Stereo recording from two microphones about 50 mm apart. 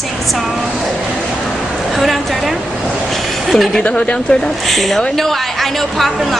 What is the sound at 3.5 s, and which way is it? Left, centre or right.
A woman's voice, centre.